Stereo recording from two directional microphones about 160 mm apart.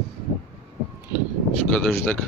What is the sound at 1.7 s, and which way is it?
Speech, 5° left (ahead or behind).